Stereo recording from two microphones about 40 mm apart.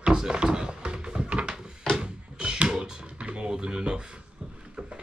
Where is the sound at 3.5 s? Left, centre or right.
Centre.